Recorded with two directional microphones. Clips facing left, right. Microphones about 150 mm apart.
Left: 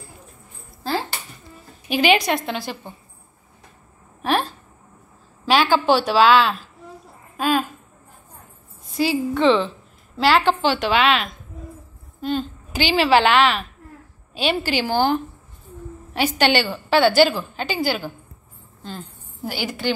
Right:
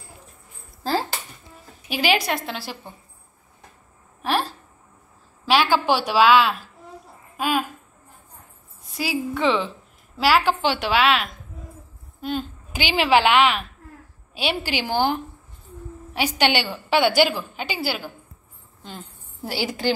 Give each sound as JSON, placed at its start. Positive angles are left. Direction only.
{"t": 1.9, "sound": "a woman's voice", "side_deg": -5}
{"t": 4.2, "sound": "a sound", "side_deg": 0}
{"t": 5.4, "sound": "a woman's voice", "side_deg": -5}
{"t": 8.9, "sound": "a woman's voice", "side_deg": -5}
{"t": 19.4, "sound": "a woman's voice", "side_deg": -30}